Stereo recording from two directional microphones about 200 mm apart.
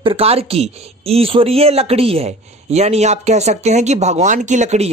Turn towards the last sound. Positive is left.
turn(degrees=-35)  # may be behind; listen again after turning